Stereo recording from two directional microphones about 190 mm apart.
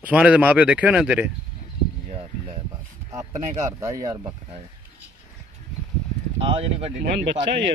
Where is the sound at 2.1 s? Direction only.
35° right (ahead or behind).